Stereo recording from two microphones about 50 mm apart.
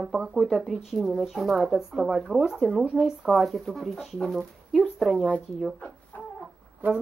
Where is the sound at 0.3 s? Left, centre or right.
Centre.